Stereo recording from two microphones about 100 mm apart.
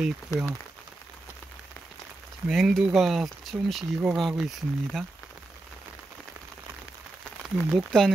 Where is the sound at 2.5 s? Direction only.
Centre (ahead or behind).